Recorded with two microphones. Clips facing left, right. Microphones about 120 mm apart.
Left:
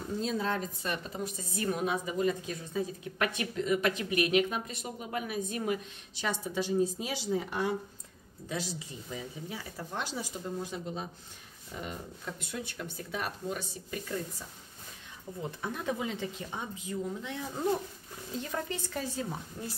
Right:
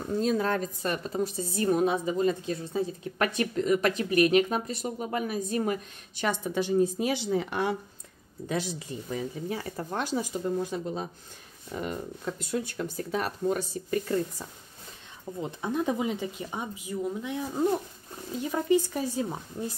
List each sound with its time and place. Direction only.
0.2 s speech: 50° right (ahead or behind)
1.2 s a woman's voice: 35° right (ahead or behind); by 7.7 s 70° right (ahead or behind)
8.5 s speech: 55° right (ahead or behind)
11.7 s speech: 55° right (ahead or behind)
12.3 s a woman's voice: 40° right (ahead or behind)
15.4 s speech: 20° right (ahead or behind)